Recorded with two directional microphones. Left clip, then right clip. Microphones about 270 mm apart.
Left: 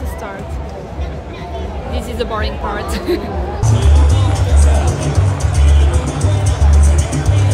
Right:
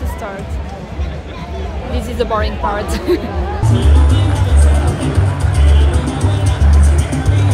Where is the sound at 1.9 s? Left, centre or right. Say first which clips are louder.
Right 4 dB; centre.